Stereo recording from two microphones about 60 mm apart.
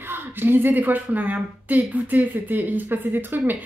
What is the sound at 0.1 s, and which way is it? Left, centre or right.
A woman's voice, right.